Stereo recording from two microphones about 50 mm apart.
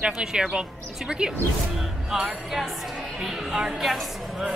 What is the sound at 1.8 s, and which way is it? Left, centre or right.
A woman's voice, centre.